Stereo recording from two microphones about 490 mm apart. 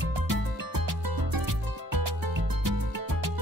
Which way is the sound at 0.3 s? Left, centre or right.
Right.